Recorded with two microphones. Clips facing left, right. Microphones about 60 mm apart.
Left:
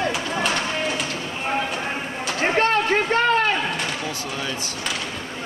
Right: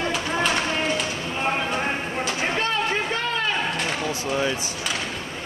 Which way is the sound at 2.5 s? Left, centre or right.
Left.